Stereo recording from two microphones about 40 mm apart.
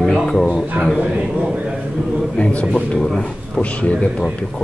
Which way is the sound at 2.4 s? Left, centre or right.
Left.